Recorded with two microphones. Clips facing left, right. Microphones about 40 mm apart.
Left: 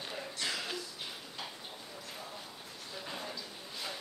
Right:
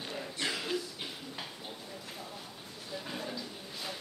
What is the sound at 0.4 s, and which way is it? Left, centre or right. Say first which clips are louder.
Music: right 2 dB; right.